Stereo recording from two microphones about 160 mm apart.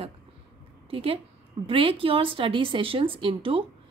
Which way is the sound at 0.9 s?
35° right (ahead or behind).